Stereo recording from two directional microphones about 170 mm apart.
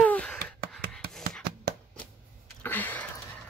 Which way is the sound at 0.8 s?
65° right (ahead or behind).